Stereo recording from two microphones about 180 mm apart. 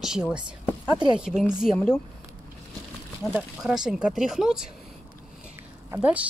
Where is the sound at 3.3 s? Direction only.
5° right (ahead or behind).